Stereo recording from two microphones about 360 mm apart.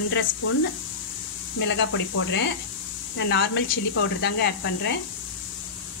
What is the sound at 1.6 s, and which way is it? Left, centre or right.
Speech, left.